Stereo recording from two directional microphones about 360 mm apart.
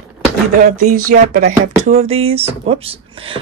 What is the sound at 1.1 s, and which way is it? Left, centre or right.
Speech, right.